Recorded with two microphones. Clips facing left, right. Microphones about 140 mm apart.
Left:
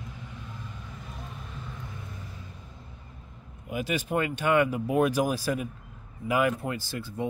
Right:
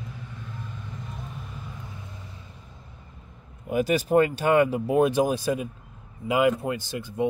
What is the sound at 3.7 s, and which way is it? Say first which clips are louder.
Speech: right 8 dB; 40° right (ahead or behind).